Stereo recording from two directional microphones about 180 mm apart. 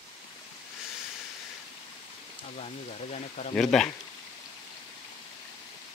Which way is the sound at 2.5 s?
40° left (ahead or behind).